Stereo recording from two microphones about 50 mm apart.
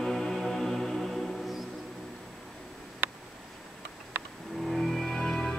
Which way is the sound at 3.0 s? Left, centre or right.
Right.